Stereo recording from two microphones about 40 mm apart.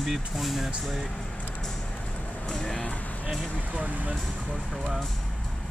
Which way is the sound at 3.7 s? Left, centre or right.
Right.